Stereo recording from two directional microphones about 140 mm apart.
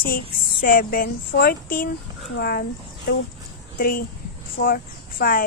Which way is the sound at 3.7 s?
90° left.